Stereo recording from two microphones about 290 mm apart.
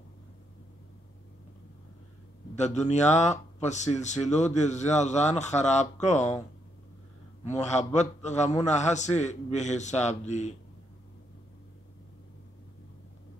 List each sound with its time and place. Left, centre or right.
2.5 s a man's voice: left
7.6 s a man's voice: left